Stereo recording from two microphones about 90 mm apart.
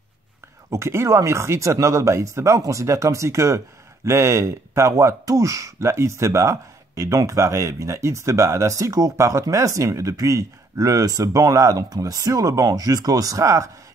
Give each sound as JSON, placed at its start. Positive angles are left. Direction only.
{"t": 0.7, "sound": "speech", "side_deg": -30}